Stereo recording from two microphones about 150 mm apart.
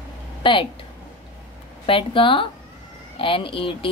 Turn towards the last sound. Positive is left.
turn(degrees=35)  # may be behind; listen again after turning